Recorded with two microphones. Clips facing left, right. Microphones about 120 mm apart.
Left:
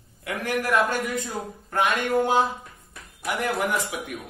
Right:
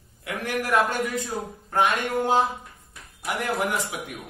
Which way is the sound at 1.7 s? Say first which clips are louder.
Even; 30° right (ahead or behind).